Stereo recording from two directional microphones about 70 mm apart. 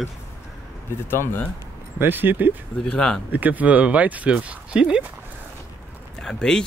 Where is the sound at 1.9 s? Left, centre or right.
Right.